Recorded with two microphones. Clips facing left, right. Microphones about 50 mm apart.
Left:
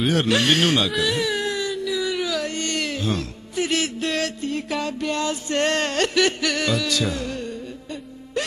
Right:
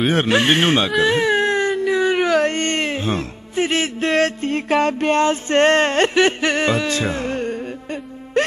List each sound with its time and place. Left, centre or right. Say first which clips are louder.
0.1 s speech: right 2 dB; right